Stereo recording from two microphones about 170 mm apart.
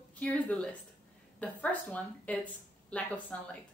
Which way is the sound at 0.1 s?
10° left (ahead or behind).